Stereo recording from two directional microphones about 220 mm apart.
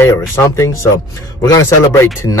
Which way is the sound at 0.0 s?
15° left (ahead or behind).